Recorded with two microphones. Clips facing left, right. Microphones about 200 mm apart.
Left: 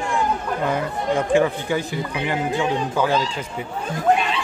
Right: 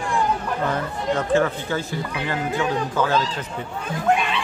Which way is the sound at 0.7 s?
10° left (ahead or behind).